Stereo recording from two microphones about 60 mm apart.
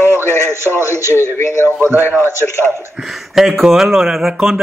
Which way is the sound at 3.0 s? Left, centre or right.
Centre.